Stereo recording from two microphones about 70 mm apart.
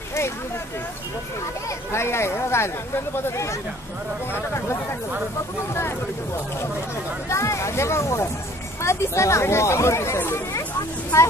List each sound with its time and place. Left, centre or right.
1.9 s speech: left
7.2 s speech: left